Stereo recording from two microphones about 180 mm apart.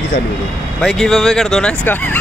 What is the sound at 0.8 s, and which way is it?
Speech, centre (ahead or behind).